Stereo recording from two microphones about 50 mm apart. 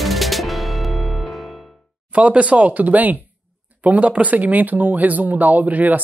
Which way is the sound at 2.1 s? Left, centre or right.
Right.